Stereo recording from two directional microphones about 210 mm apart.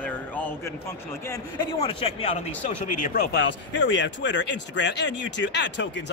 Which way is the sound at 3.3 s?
60° left (ahead or behind).